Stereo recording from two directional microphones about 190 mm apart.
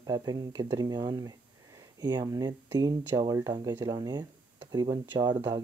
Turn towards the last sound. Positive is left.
turn(degrees=-25)  # may be behind; listen again after turning